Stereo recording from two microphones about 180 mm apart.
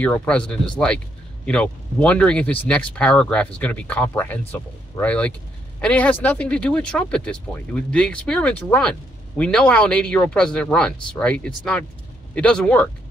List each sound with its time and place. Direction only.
0.0 s speech: 10° left (ahead or behind)